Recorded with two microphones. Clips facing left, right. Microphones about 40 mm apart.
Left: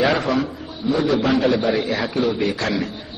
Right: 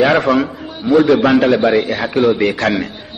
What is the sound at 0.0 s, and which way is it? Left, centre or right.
Speech, right.